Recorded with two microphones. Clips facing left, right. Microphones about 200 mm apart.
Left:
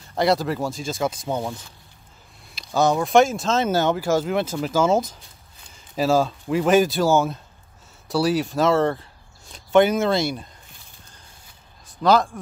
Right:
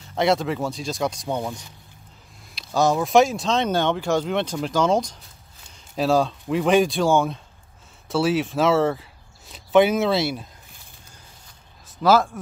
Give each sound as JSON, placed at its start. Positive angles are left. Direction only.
{"t": 0.1, "sound": "speech", "side_deg": 0}
{"t": 12.0, "sound": "speech", "side_deg": -5}